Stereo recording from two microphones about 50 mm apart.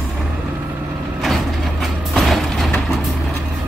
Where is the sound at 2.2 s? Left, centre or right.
Centre.